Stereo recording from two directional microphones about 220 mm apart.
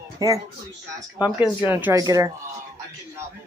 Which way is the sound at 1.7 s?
10° right (ahead or behind).